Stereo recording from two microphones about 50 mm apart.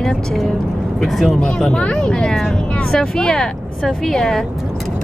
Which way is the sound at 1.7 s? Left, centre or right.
Centre.